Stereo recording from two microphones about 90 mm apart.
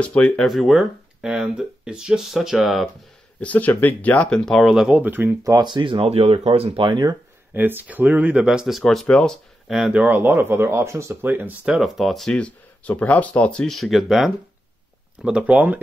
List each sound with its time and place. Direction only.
0.0 s speech: 15° left (ahead or behind)
0.5 s speech: centre (ahead or behind)
3.3 s speech: 15° left (ahead or behind); by 4.9 s 5° right (ahead or behind)
4.9 s speech: 20° right (ahead or behind)
5.4 s speech: 40° right (ahead or behind)
5.7 s speech: 70° right (ahead or behind)
7.5 s speech: 20° right (ahead or behind)
11.6 s speech: 5° right (ahead or behind)
12.4 s speech: 15° left (ahead or behind)
13.7 s speech: centre (ahead or behind)
15.2 s speech: 15° right (ahead or behind)